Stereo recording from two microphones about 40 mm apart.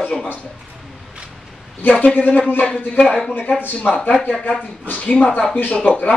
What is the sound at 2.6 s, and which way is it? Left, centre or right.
Speech, left.